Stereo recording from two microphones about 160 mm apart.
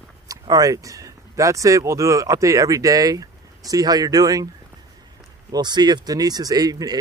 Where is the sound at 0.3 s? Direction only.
25° right (ahead or behind).